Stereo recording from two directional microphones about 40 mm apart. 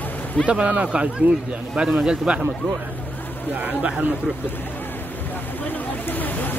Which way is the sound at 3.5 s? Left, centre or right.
Right.